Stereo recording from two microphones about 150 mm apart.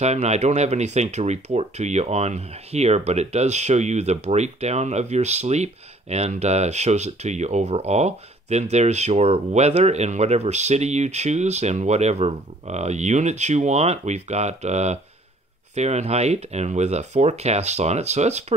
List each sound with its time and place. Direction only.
0.0 s speech: 45° right (ahead or behind)